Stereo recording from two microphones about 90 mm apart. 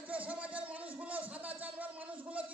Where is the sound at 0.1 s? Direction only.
15° right (ahead or behind).